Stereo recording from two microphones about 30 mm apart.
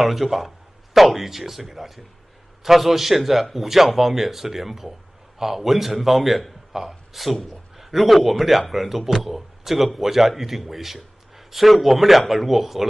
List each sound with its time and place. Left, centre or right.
0.0 s speech: centre